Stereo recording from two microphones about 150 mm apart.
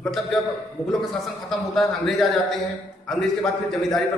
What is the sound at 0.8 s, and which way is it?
Speech, 45° left (ahead or behind).